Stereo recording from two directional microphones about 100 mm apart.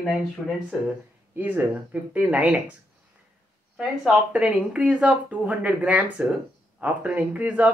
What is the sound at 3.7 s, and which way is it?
Speech, 10° right (ahead or behind).